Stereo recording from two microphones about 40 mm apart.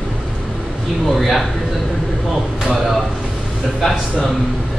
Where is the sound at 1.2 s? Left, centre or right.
Centre.